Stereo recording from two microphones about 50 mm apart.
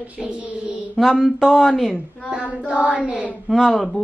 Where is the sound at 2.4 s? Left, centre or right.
Right.